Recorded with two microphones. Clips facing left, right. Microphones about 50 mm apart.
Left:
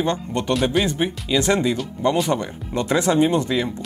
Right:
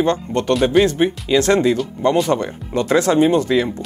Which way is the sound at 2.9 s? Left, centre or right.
Right.